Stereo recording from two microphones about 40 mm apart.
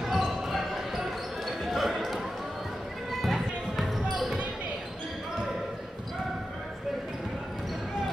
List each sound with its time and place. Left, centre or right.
0.0 s basketball bounce: centre